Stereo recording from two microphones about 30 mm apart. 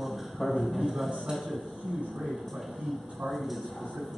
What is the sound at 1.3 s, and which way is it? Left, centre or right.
Speech, centre.